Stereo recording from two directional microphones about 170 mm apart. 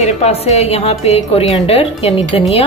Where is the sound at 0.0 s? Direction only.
40° left (ahead or behind).